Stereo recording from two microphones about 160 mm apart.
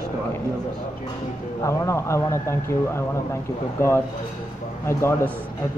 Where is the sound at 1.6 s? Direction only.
20° left (ahead or behind).